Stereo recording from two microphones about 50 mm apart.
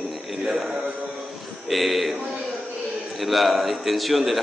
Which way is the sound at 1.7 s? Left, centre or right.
Centre.